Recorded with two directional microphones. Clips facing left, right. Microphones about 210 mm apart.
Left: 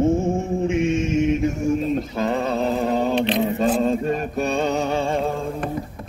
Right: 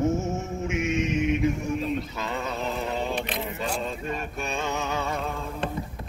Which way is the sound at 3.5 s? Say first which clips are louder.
Left 11 dB; 35° left (ahead or behind).